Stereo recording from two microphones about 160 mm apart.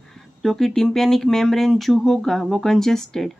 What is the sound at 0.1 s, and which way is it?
Speech, centre (ahead or behind).